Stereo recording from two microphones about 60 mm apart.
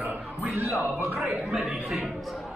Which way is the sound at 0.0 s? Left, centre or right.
Centre.